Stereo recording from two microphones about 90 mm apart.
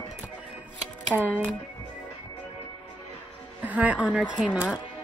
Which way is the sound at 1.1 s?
20° right (ahead or behind).